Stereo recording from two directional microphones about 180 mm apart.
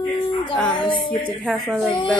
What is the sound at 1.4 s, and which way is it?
Speech, 5° right (ahead or behind).